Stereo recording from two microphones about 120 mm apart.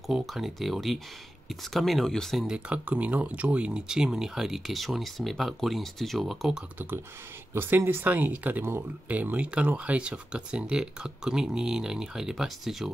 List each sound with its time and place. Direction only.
0.0 s speech: centre (ahead or behind)
7.5 s speech: 20° right (ahead or behind); by 12.9 s 5° right (ahead or behind)